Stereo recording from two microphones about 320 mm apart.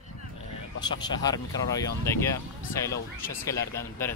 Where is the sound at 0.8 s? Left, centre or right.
Centre.